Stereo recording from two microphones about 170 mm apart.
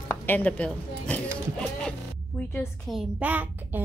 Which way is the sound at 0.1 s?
10° left (ahead or behind).